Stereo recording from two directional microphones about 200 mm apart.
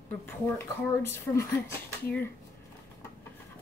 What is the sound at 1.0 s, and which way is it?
Speech, 10° left (ahead or behind).